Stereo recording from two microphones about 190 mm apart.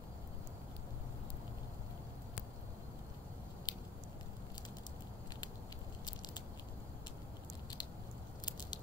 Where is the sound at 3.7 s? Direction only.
20° left (ahead or behind).